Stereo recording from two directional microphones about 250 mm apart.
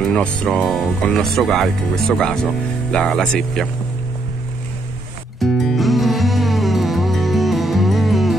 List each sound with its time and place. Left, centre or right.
0.0 s speech: centre
5.4 s music: centre